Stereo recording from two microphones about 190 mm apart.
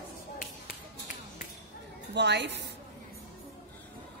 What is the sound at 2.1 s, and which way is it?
Music, 65° right (ahead or behind).